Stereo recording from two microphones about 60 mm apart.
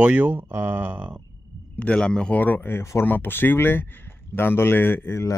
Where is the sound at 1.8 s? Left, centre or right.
Centre.